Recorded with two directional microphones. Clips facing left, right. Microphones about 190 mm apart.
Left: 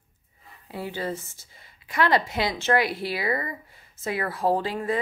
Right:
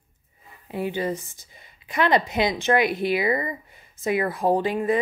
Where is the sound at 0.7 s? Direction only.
15° right (ahead or behind).